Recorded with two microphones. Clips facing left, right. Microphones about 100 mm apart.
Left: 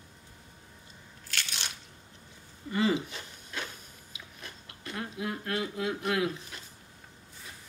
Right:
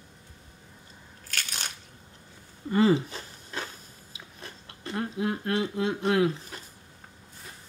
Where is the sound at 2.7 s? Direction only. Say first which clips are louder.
Right 6 dB; 40° right (ahead or behind).